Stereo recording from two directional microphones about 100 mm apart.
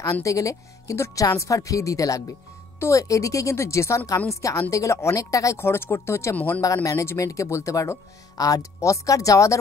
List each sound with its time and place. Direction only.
0.0 s speech: 35° left (ahead or behind)
6.3 s speech: 15° left (ahead or behind)
6.6 s speech: 35° left (ahead or behind)